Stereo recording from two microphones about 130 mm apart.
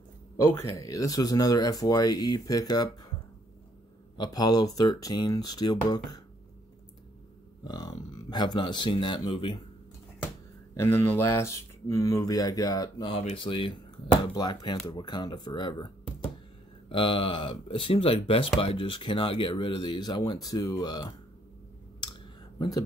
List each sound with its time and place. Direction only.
0.6 s speech: 25° left (ahead or behind)
4.2 s speech: 30° left (ahead or behind)
7.6 s speech: 30° left (ahead or behind)
10.7 s speech: 20° left (ahead or behind)
13.1 s speech: 50° left (ahead or behind); by 15.9 s 35° left (ahead or behind)
16.9 s speech: 40° left (ahead or behind)
22.0 s a sound: 35° left (ahead or behind)